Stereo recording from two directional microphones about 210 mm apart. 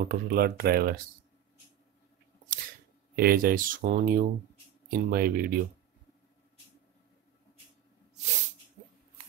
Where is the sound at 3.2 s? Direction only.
45° right (ahead or behind).